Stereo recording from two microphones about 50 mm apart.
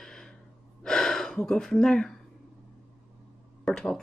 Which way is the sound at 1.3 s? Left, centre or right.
Centre.